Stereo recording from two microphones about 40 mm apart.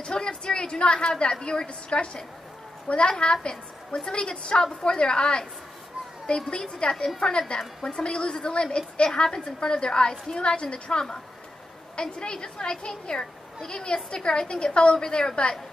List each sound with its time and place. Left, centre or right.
0.0 s a woman's voice: left
6.6 s a woman's voice: centre